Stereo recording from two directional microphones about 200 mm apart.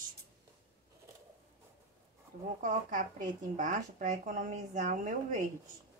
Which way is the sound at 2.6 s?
40° right (ahead or behind).